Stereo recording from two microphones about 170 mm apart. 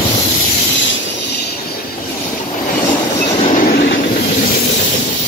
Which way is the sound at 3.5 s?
60° left (ahead or behind).